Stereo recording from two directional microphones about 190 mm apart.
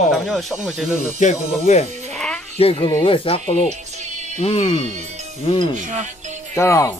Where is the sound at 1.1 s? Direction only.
40° left (ahead or behind).